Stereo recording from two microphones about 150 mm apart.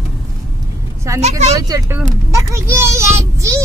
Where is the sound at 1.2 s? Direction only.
45° right (ahead or behind).